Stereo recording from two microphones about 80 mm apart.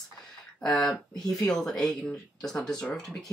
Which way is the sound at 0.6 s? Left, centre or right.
Centre.